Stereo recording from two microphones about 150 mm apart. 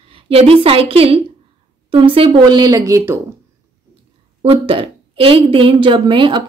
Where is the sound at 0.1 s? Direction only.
40° right (ahead or behind).